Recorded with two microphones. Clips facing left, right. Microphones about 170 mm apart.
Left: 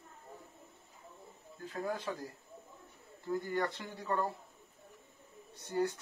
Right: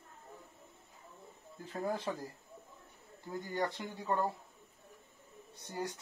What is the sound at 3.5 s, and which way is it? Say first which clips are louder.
Speech: left 1 dB; 20° right (ahead or behind).